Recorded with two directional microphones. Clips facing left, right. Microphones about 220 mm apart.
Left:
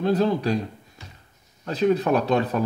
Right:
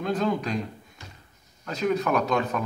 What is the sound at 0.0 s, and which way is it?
Speech, 35° left (ahead or behind).